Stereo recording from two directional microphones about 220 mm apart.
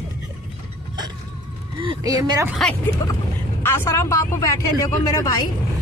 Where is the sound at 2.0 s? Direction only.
15° right (ahead or behind).